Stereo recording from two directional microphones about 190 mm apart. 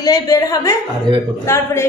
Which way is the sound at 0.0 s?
20° left (ahead or behind).